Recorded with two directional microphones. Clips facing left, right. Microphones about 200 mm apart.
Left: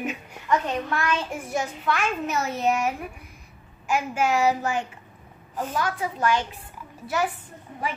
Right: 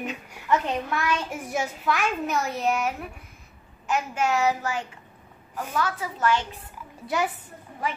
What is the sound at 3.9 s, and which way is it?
Speech, 5° left (ahead or behind).